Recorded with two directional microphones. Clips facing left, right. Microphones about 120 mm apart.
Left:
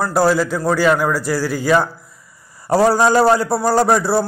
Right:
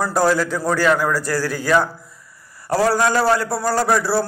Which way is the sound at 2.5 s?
25° left (ahead or behind).